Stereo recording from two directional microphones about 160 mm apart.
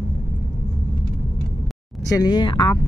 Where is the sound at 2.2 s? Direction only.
30° left (ahead or behind).